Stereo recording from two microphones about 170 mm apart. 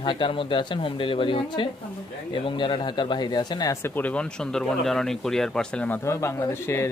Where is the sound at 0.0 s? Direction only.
30° left (ahead or behind).